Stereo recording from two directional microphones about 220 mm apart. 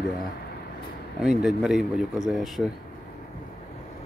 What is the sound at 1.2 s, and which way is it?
Speech, 5° right (ahead or behind).